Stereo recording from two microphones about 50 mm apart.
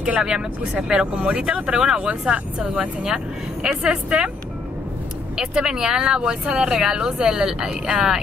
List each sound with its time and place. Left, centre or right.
0.2 s speech: centre
5.4 s speech: centre